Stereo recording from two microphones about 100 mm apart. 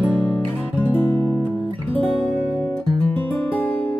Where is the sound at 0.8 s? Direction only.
15° left (ahead or behind).